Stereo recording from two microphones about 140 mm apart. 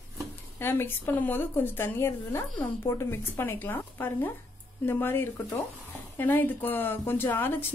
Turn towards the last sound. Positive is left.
turn(degrees=15)  # may be behind; listen again after turning